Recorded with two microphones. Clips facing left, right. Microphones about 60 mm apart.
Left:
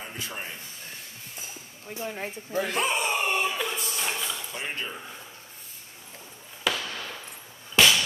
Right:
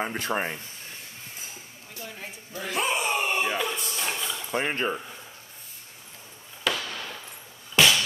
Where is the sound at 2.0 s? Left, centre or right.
Left.